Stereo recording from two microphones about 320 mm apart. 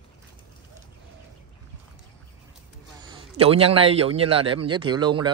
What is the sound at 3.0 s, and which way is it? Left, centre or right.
Speech, centre.